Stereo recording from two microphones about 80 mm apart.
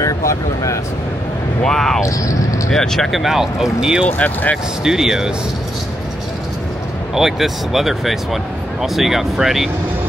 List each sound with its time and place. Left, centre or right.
0.0 s speech: left
1.6 s speech: centre
4.2 s speech: centre
4.8 s speech: centre
7.2 s speech: centre